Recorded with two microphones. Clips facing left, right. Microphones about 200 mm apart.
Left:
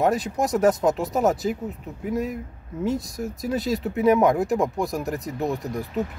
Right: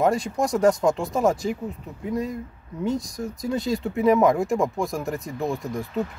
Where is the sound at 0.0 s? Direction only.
Centre (ahead or behind).